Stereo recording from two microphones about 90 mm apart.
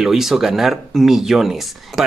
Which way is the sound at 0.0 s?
5° right (ahead or behind).